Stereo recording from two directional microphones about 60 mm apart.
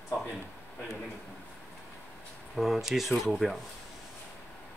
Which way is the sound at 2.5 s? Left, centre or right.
Centre.